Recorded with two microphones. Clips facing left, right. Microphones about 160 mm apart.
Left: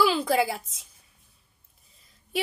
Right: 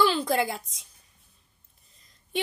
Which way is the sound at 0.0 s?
5° left (ahead or behind).